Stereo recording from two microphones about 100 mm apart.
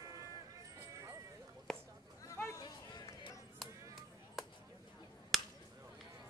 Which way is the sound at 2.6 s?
45° left (ahead or behind).